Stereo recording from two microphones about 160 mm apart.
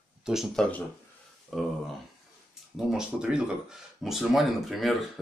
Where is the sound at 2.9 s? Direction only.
5° right (ahead or behind).